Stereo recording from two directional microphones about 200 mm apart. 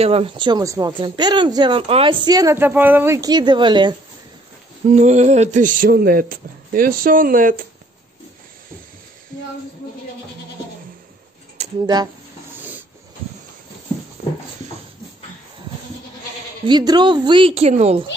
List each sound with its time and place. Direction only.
0.0 s speech: 30° right (ahead or behind)
4.8 s speech: 35° right (ahead or behind)
11.8 s speech: 20° right (ahead or behind)
16.6 s speech: 20° right (ahead or behind)